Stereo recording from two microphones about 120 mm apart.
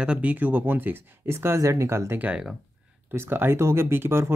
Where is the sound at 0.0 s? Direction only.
10° right (ahead or behind).